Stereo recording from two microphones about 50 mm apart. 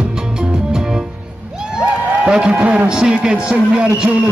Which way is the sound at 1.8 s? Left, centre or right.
Centre.